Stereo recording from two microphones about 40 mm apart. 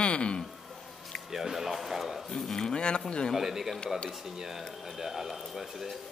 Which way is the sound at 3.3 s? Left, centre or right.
Centre.